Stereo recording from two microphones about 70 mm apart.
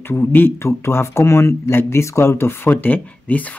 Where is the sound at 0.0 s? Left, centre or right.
Left.